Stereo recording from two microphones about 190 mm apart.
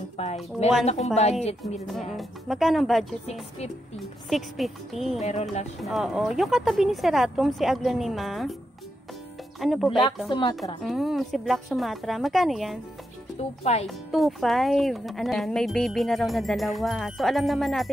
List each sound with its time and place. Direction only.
0.2 s speech: 35° left (ahead or behind)
1.9 s speech: centre (ahead or behind)
5.2 s speech: 35° left (ahead or behind)
5.8 s speech: centre (ahead or behind)
9.6 s speech: centre (ahead or behind)
9.8 s speech: 25° left (ahead or behind)
10.8 s speech: centre (ahead or behind)
13.4 s speech: 35° left (ahead or behind)
13.8 s speech: centre (ahead or behind)